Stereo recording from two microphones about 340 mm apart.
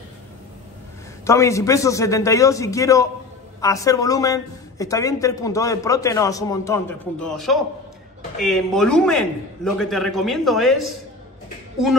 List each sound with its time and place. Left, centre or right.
1.2 s a woman's voice: centre